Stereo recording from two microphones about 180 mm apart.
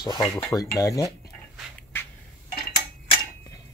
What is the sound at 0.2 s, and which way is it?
Speech, centre (ahead or behind).